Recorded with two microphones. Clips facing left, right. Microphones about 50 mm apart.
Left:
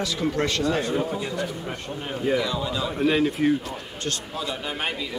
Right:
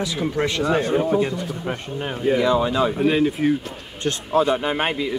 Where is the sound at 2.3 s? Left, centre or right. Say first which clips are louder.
Right 8 dB; right.